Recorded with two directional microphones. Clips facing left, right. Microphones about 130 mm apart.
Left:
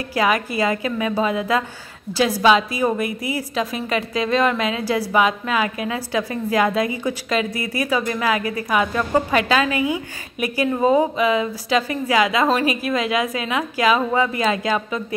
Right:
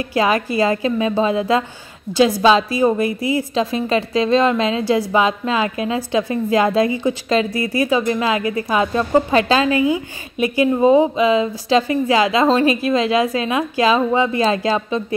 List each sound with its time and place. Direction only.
0.0 s speech: 25° right (ahead or behind)